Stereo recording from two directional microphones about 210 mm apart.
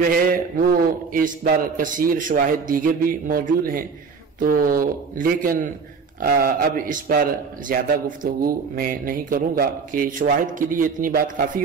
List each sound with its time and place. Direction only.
0.1 s a man's voice: 45° right (ahead or behind)